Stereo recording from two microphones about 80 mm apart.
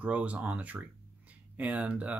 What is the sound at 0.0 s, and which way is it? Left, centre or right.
Speech, centre.